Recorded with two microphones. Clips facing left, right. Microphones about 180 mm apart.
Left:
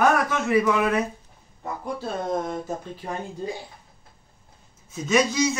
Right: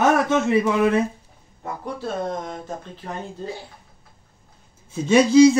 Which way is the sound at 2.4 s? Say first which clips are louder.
Left 2 dB; 10° left (ahead or behind).